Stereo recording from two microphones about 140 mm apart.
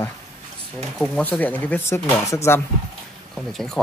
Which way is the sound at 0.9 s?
5° left (ahead or behind).